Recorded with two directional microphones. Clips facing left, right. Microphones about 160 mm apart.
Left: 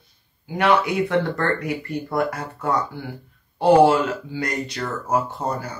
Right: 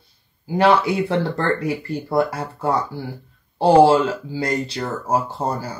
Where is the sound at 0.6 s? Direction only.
30° right (ahead or behind).